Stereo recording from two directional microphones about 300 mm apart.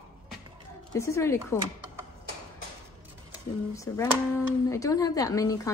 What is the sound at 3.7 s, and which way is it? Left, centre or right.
A woman's voice, centre.